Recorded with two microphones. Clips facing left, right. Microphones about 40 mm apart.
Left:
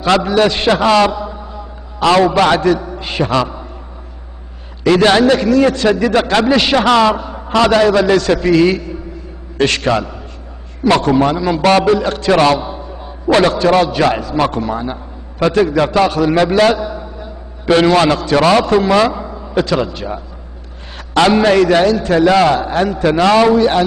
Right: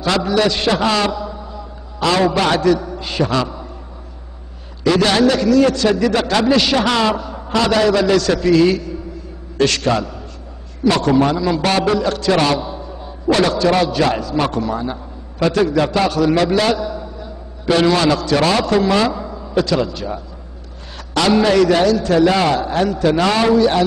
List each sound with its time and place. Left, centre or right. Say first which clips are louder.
0.0 s a man's voice: left 4 dB; left
4.8 s a man's voice: left 4 dB; left